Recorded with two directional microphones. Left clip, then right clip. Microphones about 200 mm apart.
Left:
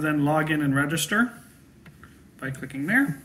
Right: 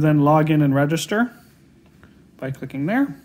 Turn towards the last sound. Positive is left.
turn(degrees=-50)  # may be behind; listen again after turning